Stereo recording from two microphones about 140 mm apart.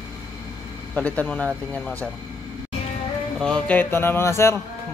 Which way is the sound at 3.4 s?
5° left (ahead or behind).